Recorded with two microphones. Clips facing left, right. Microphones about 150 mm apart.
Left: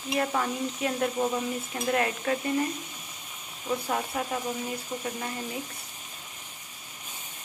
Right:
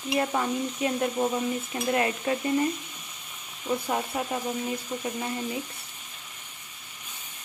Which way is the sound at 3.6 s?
10° right (ahead or behind).